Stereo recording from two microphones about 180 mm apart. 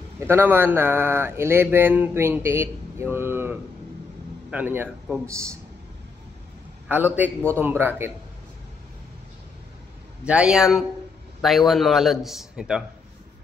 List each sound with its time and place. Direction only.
0.2 s speech: 10° right (ahead or behind)
6.9 s speech: 10° right (ahead or behind)
10.2 s a man's voice: 5° right (ahead or behind)